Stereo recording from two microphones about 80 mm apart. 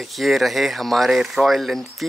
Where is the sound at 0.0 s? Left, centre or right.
Centre.